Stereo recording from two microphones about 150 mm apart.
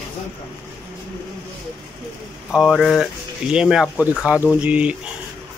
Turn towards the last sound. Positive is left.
turn(degrees=-10)  # may be behind; listen again after turning